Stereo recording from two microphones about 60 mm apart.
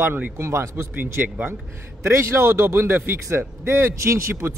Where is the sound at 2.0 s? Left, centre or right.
Right.